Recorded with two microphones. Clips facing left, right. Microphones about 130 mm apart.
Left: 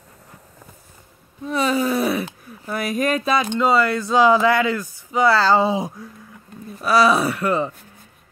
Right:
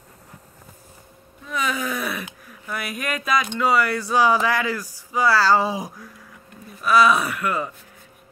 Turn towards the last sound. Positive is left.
turn(degrees=30)  # may be behind; listen again after turning